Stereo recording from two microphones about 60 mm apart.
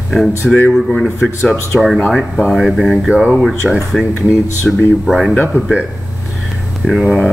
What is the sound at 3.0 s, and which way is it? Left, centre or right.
Speech, centre.